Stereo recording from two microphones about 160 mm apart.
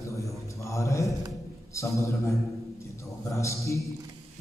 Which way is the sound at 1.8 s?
20° left (ahead or behind).